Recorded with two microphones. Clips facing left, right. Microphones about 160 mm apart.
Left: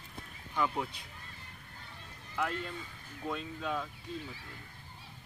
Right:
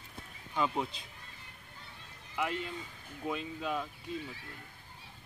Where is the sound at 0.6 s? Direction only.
25° right (ahead or behind).